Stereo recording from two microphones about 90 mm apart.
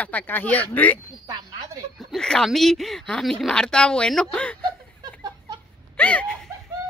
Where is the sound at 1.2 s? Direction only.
40° right (ahead or behind).